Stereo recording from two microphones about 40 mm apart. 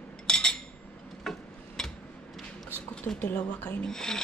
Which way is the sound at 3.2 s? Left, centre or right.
Left.